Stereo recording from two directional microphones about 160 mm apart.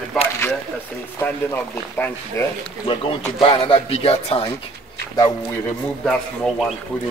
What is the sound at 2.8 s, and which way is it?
Speech, 35° left (ahead or behind).